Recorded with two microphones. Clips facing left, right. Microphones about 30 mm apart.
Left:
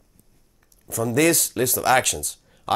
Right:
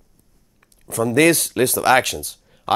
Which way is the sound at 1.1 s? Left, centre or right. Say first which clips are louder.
Right 4 dB; right.